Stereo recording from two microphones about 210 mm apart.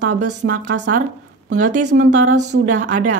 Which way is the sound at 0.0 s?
90° right.